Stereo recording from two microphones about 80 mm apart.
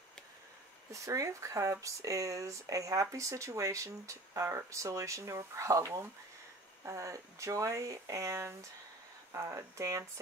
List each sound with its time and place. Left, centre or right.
0.9 s speech: right